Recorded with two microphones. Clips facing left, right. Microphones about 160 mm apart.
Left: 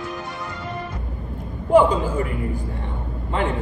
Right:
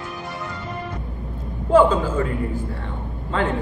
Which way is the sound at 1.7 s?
15° left (ahead or behind).